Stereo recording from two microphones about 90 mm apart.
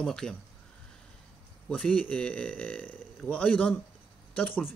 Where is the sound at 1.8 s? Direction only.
15° left (ahead or behind).